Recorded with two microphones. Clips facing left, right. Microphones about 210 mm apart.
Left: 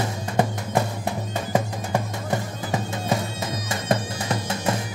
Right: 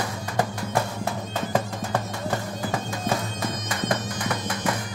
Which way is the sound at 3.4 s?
25° left (ahead or behind).